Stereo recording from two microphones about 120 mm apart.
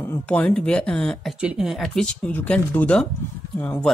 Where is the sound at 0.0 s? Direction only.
15° left (ahead or behind).